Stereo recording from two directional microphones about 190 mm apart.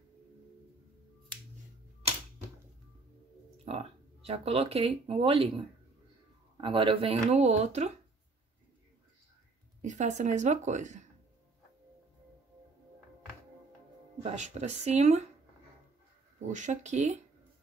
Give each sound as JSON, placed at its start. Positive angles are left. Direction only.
{"t": 3.6, "sound": "speech", "side_deg": -30}
{"t": 6.6, "sound": "speech", "side_deg": -25}
{"t": 9.8, "sound": "speech", "side_deg": -40}
{"t": 14.2, "sound": "speech", "side_deg": -35}
{"t": 16.3, "sound": "speech", "side_deg": -40}